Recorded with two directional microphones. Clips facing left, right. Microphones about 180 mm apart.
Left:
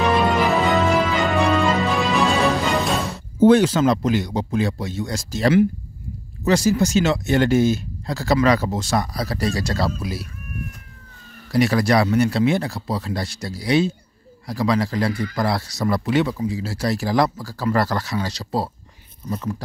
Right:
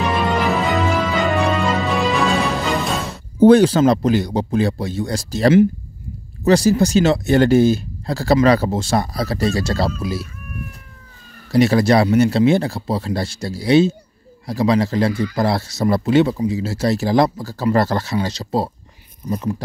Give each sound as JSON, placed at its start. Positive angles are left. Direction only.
{"t": 0.5, "sound": "music", "side_deg": 0}
{"t": 3.3, "sound": "speech", "side_deg": -35}
{"t": 11.5, "sound": "speech", "side_deg": -25}